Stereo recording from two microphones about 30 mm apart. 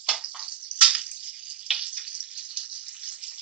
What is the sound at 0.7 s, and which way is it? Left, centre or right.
Bathtub, right.